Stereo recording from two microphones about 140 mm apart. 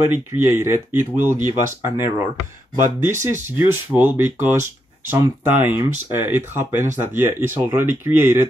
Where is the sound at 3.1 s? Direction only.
15° right (ahead or behind).